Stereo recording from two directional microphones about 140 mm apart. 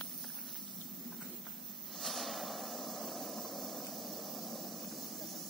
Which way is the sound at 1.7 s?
Centre (ahead or behind).